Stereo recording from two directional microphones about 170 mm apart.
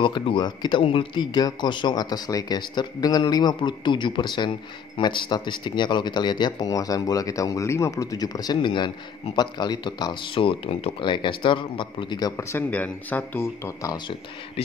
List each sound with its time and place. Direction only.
0.0 s speech: 30° left (ahead or behind)